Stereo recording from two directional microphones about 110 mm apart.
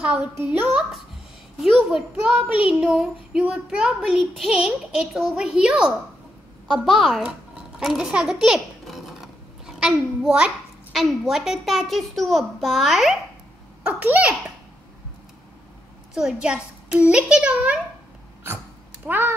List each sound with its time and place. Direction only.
0.0 s a child's voice: 10° right (ahead or behind)
13.8 s a child's voice: 15° right (ahead or behind)
16.2 s a child's voice: 5° right (ahead or behind)
19.0 s a child's voice: 20° right (ahead or behind)